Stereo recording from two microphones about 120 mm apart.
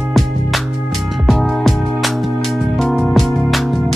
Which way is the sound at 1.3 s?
Centre (ahead or behind).